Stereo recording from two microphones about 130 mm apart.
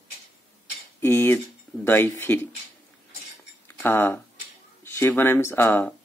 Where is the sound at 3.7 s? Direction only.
15° left (ahead or behind).